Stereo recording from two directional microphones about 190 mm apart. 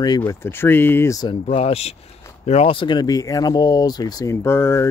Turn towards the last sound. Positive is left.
turn(degrees=15)  # may be behind; listen again after turning